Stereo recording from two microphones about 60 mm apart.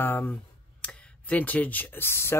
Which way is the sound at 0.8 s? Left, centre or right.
Left.